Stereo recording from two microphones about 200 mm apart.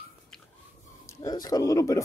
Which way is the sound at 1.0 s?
15° left (ahead or behind).